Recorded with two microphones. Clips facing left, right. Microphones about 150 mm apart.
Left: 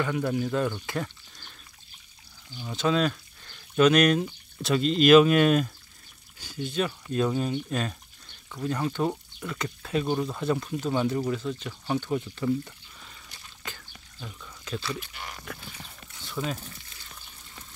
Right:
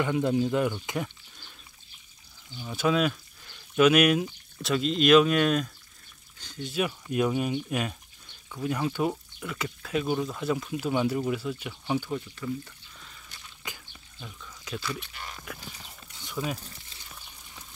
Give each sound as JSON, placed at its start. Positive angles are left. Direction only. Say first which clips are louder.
{"t": 0.0, "sound": "speech", "louder": "right 2 dB", "side_deg": -20}
{"t": 2.7, "sound": "speech", "louder": "even", "side_deg": -10}
{"t": 6.7, "sound": "speech", "louder": "even", "side_deg": -10}
{"t": 12.4, "sound": "speech", "louder": "left 7 dB", "side_deg": 30}
{"t": 15.6, "sound": "clip-clop", "louder": "left 1 dB", "side_deg": -15}